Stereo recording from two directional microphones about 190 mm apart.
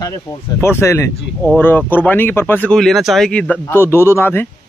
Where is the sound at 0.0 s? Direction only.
15° left (ahead or behind).